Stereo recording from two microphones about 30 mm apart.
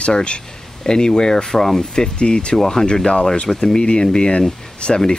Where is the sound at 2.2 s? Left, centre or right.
Left.